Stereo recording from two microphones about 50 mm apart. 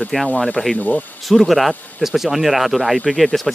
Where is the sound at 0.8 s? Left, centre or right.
Left.